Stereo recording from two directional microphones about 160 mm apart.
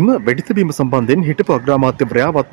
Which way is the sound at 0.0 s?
20° left (ahead or behind).